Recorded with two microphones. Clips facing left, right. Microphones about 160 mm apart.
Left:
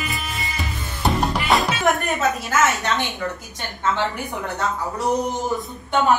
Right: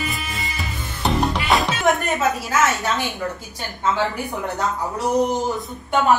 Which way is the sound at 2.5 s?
Centre (ahead or behind).